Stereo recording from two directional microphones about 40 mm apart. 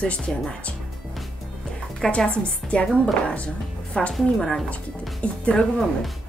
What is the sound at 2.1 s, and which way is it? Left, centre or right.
Speech, left.